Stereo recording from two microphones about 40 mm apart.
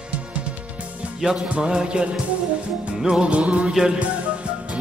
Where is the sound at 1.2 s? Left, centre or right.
Centre.